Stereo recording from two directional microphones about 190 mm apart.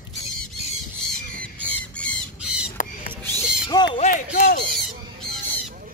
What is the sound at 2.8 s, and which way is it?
Rodents, 45° left (ahead or behind).